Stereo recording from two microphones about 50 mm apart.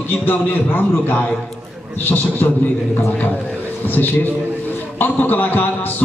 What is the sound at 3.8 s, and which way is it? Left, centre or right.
A man's voice, left.